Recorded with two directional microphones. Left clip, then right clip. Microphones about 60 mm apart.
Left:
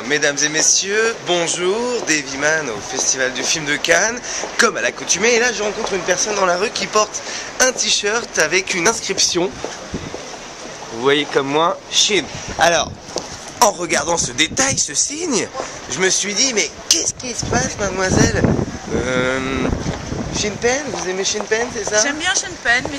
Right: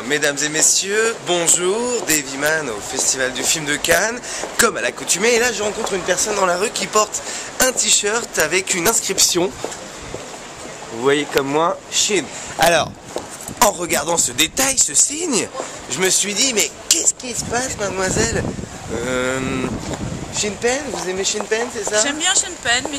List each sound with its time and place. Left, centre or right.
0.1 s speech: centre
11.0 s speech: centre
11.9 s speech: centre
13.6 s speech: centre